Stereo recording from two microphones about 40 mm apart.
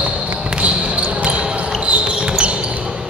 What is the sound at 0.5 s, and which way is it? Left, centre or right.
Basketball bounce, right.